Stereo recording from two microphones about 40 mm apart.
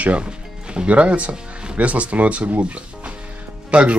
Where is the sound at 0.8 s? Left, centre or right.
Right.